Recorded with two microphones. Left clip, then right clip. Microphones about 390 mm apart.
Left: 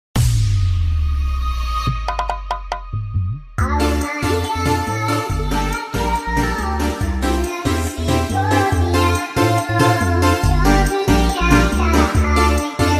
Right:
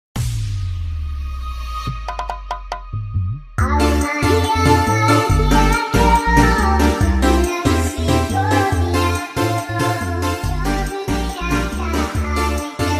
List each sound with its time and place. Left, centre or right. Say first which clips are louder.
1.7 s music: left 4 dB; left
3.5 s music: right 2 dB; centre; by 12.9 s left